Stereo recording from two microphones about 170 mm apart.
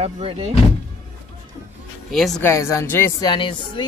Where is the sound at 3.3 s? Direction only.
30° left (ahead or behind).